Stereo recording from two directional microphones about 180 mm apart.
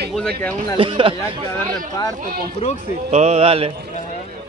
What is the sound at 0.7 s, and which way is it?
Speech, 30° right (ahead or behind).